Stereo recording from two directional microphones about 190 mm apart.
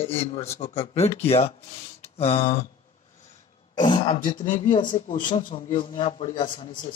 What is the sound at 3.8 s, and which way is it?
Speech, 25° left (ahead or behind).